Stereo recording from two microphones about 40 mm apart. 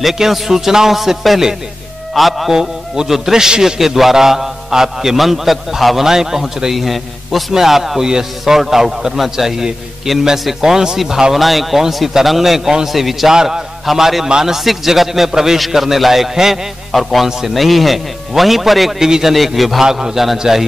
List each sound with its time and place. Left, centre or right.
0.0 s a man's voice: centre
13.3 s a man's voice: centre
13.8 s a man's voice: centre
18.9 s a man's voice: centre
19.3 s a man's voice: centre
19.8 s a man's voice: centre